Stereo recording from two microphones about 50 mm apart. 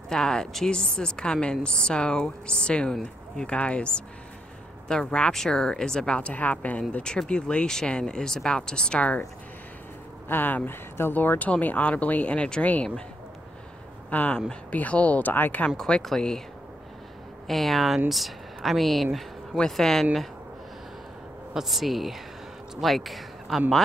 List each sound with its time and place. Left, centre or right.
0.1 s a woman's voice: centre
5.0 s a woman's voice: left
6.3 s speech: left
6.9 s a woman's voice: centre
10.2 s speech: left
14.1 s speech: left
15.8 s a woman's voice: centre
17.5 s speech: centre
21.5 s speech: centre